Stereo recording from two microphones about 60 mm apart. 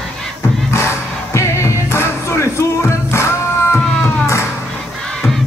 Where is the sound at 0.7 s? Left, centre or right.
Left.